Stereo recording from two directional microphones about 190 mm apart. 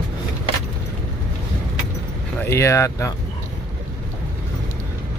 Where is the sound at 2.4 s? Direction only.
15° left (ahead or behind).